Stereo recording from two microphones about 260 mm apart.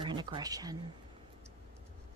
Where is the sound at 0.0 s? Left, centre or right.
Centre.